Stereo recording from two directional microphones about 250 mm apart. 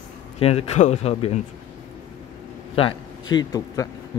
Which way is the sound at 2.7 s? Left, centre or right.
Left.